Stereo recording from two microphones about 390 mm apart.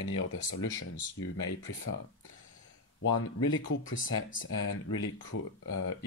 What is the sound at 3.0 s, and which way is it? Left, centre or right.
Speech, left.